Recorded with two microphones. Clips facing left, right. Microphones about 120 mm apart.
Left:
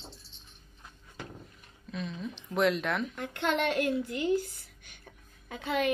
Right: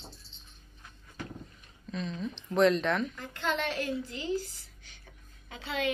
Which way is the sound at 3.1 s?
65° left (ahead or behind).